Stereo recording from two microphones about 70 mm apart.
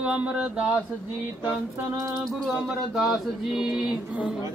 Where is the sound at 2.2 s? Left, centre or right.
Centre.